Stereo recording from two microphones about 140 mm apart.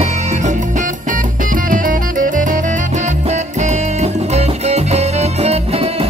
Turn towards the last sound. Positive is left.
turn(degrees=-45)  # may be behind; listen again after turning